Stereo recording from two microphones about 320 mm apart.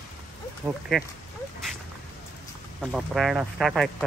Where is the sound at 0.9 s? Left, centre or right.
Centre.